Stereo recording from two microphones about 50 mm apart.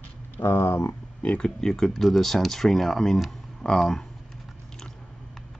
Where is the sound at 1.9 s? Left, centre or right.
Centre.